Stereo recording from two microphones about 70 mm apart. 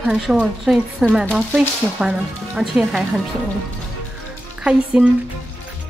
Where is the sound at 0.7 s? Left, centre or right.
Right.